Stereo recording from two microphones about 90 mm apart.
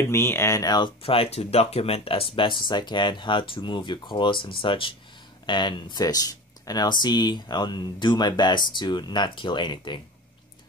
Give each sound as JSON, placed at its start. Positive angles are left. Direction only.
{"t": 0.1, "sound": "speech", "side_deg": 30}
{"t": 0.6, "sound": "speech", "side_deg": 55}
{"t": 5.5, "sound": "speech", "side_deg": 60}